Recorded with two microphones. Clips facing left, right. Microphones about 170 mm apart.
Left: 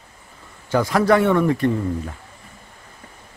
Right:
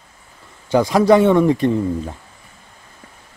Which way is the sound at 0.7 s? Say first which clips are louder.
Right 4 dB; 15° right (ahead or behind).